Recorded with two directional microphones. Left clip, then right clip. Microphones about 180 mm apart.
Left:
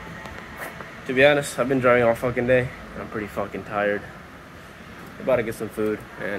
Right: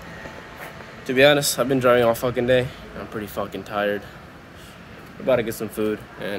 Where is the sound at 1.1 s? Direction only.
25° right (ahead or behind).